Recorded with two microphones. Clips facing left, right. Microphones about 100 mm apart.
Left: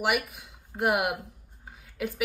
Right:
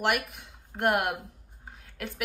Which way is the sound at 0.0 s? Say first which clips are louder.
Even; 5° left (ahead or behind).